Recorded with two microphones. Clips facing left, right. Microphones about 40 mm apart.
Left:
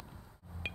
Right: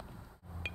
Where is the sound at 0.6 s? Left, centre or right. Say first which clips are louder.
Left 1 dB; left.